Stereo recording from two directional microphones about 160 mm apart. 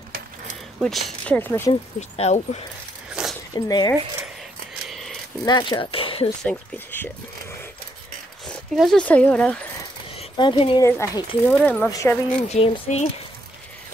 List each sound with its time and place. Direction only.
0.7 s speech: centre (ahead or behind)
2.0 s speech: 45° left (ahead or behind)
3.1 s zipper: 5° right (ahead or behind)
3.5 s speech: 25° left (ahead or behind)
4.8 s a sound: centre (ahead or behind)
5.4 s speech: 25° left (ahead or behind)
6.4 s speech: 15° left (ahead or behind)
8.7 s speech: 5° left (ahead or behind)
10.1 s speech: 30° left (ahead or behind)
10.8 s speech: 20° left (ahead or behind)
11.5 s mechanisms: 5° left (ahead or behind)
11.9 s speech: 20° left (ahead or behind)
12.4 s speech: 35° left (ahead or behind)